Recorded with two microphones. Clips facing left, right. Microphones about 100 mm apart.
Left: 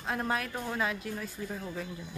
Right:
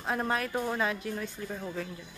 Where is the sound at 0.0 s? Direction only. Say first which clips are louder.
Right 2 dB; centre (ahead or behind).